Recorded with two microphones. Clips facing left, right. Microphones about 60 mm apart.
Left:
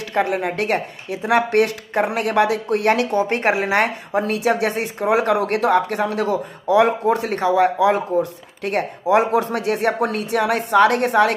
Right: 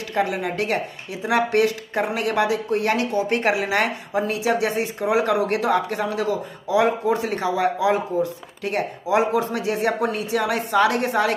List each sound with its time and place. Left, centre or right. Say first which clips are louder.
0.1 s speech: left 3 dB; left
4.2 s speech: left 2 dB; left